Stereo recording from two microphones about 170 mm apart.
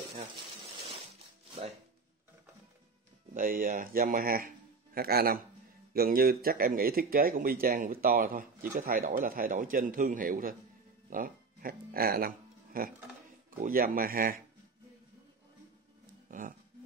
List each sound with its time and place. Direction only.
3.3 s speech: 55° right (ahead or behind)
16.3 s speech: 50° right (ahead or behind)